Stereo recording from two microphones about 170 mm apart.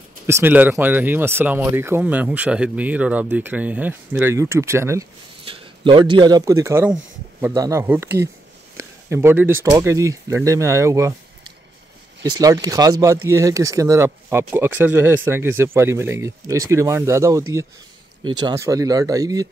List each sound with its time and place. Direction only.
0.3 s speech: 10° right (ahead or behind)
5.4 s a man's voice: 30° right (ahead or behind); by 8.3 s 15° right (ahead or behind)
8.7 s a sound: 15° right (ahead or behind)
9.7 s speech: 20° right (ahead or behind)
12.2 s speech: 20° right (ahead or behind)